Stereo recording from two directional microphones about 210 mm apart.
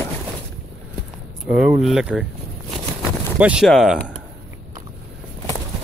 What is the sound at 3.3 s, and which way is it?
Speech, 5° right (ahead or behind).